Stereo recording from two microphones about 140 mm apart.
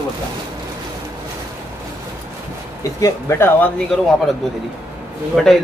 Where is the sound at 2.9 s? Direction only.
20° left (ahead or behind).